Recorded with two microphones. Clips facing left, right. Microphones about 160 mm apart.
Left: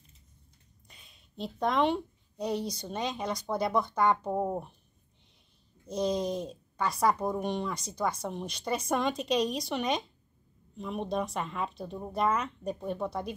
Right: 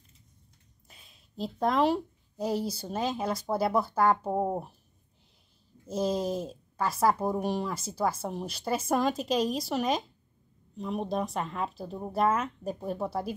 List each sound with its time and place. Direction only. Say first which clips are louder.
0.8 s speech: right 1 dB; centre (ahead or behind)
4.3 s speech: right 2 dB; 15° right (ahead or behind)
5.9 s speech: right 1 dB; 5° right (ahead or behind)